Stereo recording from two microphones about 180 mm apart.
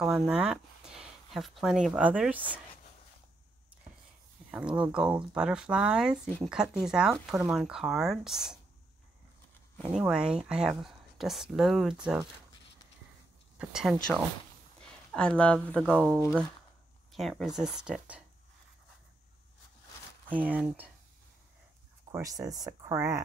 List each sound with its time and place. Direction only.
0.0 s speech: 5° right (ahead or behind)
4.5 s speech: 5° right (ahead or behind)
6.2 s speech: 10° left (ahead or behind)
6.5 s speech: 5° right (ahead or behind)
9.8 s speech: 5° right (ahead or behind)
13.6 s speech: 5° right (ahead or behind)
17.1 s speech: centre (ahead or behind)
20.2 s speech: 10° right (ahead or behind)
22.1 s speech: 20° right (ahead or behind)